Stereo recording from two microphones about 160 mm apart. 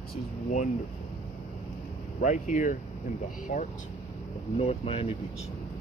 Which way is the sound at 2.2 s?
50° left (ahead or behind).